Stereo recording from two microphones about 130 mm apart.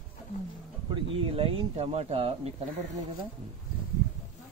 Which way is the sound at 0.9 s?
45° right (ahead or behind).